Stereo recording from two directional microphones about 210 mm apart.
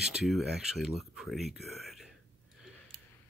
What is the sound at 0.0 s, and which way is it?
Speech, centre (ahead or behind).